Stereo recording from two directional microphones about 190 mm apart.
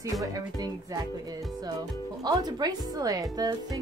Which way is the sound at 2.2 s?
20° right (ahead or behind).